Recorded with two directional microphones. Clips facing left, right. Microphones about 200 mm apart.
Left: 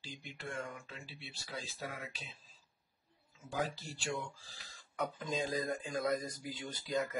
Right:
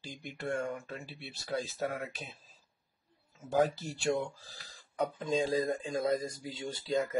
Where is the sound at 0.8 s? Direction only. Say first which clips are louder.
Right 7 dB; 50° right (ahead or behind).